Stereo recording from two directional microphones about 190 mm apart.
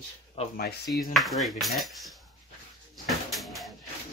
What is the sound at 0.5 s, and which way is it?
Speech, 55° left (ahead or behind).